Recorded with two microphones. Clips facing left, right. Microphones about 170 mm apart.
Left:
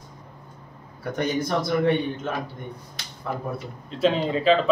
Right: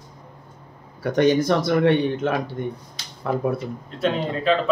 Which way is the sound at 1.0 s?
85° right.